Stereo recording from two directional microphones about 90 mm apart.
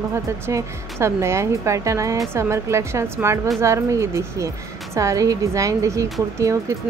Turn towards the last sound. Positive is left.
turn(degrees=-35)  # may be behind; listen again after turning